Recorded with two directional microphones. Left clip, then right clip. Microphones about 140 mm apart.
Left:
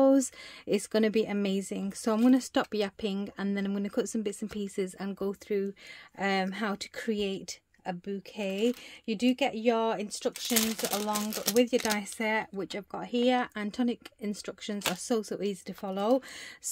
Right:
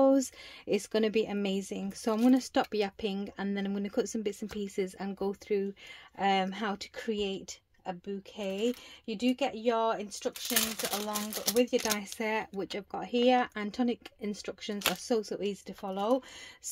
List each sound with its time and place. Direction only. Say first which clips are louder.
0.0 s a woman's voice: left 1 dB; 30° left (ahead or behind); by 10.3 s 50° left (ahead or behind)
10.5 s speech: left 1 dB; 75° left (ahead or behind); by 11.9 s 55° left (ahead or behind)
11.9 s a woman's voice: left 2 dB; 35° left (ahead or behind)
15.0 s speech: even; 40° left (ahead or behind); by 16.3 s 55° left (ahead or behind)